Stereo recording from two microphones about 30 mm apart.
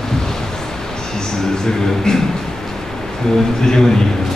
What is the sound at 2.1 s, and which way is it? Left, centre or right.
Speech, left.